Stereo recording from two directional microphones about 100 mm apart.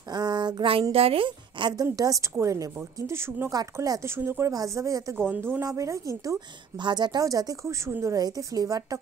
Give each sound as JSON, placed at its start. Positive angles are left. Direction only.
{"t": 0.1, "sound": "a sound", "side_deg": -45}
{"t": 0.9, "sound": "speech", "side_deg": -70}
{"t": 2.0, "sound": "a woman's voice", "side_deg": -35}
{"t": 3.5, "sound": "a woman's voice", "side_deg": -35}
{"t": 5.1, "sound": "a woman's voice", "side_deg": -20}
{"t": 6.8, "sound": "a woman's voice", "side_deg": -45}